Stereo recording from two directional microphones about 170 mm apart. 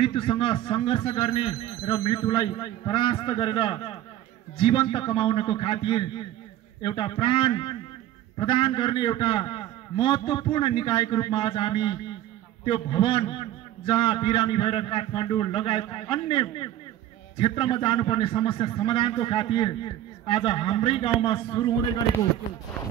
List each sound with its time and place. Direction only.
0.0 s a man's voice: 35° left (ahead or behind)